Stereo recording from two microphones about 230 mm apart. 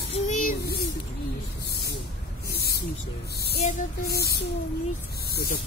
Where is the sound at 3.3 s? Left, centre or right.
Left.